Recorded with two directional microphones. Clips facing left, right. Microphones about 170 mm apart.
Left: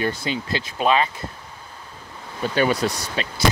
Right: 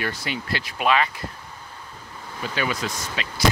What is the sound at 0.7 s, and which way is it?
Speech, 30° left (ahead or behind).